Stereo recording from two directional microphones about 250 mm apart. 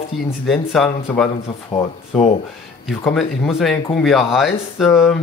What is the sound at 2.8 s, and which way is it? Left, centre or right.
Speech, centre.